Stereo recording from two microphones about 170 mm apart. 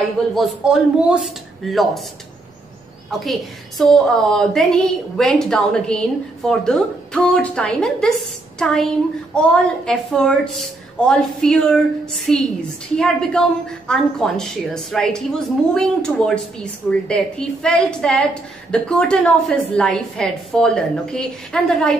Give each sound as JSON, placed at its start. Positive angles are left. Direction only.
{"t": 0.3, "sound": "a woman's voice", "side_deg": 0}
{"t": 3.1, "sound": "a woman's voice", "side_deg": 0}